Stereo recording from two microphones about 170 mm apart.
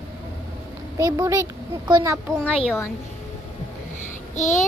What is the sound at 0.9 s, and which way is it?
A child's voice, 20° right (ahead or behind).